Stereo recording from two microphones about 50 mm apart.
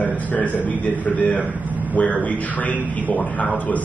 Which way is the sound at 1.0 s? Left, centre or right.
Left.